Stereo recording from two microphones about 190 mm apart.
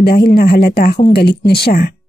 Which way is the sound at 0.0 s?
55° left (ahead or behind).